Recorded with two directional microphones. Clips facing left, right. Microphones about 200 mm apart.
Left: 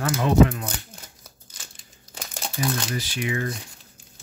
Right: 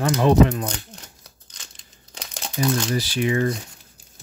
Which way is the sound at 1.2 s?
5° left (ahead or behind).